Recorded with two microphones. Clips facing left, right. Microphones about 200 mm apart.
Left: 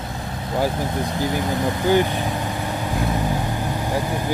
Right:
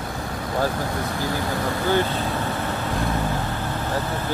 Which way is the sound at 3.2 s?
15° left (ahead or behind).